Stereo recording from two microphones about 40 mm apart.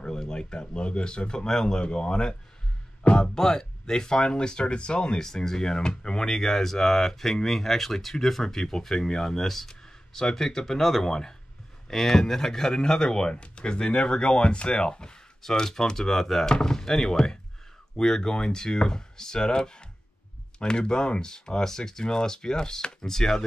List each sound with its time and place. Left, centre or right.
0.0 s speech: centre
3.3 s speech: centre
5.2 s speech: centre